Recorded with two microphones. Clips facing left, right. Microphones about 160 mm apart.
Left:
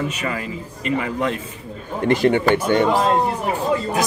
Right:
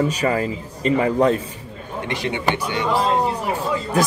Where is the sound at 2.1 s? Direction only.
45° left (ahead or behind).